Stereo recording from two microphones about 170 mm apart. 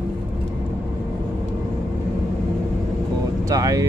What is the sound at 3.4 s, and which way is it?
Speech, 20° right (ahead or behind).